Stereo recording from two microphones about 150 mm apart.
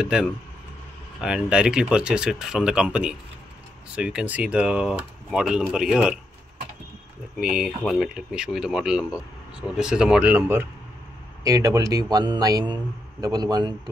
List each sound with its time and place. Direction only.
0.0 s speech: 5° right (ahead or behind)
7.3 s a man's voice: 5° right (ahead or behind); by 13.7 s 25° right (ahead or behind)